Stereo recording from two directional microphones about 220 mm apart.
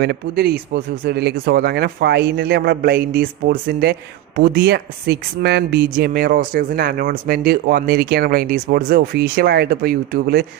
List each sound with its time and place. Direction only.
0.0 s speech: 50° right (ahead or behind)